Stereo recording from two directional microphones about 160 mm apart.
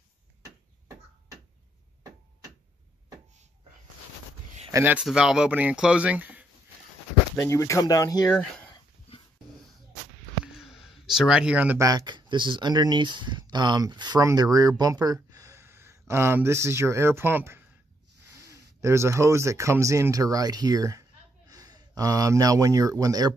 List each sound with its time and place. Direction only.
4.8 s speech: 5° right (ahead or behind)
7.4 s speech: 20° left (ahead or behind)
8.3 s speech: 5° left (ahead or behind)
10.4 s a sound: 5° right (ahead or behind)
11.8 s speech: 25° right (ahead or behind)